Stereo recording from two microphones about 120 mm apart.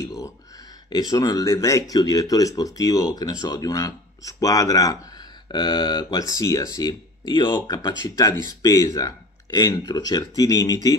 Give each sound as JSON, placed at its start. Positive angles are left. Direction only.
{"t": 0.0, "sound": "speech", "side_deg": 25}